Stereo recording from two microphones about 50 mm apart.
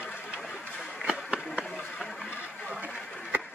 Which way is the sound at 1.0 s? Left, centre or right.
Centre.